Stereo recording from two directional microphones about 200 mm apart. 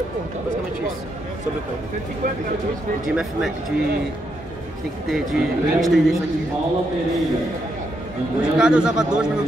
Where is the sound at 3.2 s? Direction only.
Centre (ahead or behind).